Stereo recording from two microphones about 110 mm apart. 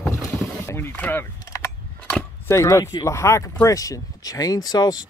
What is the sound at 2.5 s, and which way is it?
Speech, 25° left (ahead or behind).